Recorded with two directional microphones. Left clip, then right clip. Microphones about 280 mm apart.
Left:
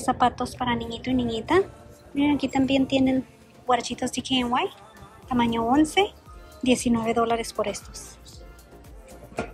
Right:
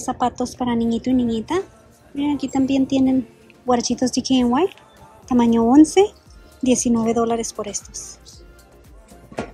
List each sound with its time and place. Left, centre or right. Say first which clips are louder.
0.0 s speech: right 1 dB; centre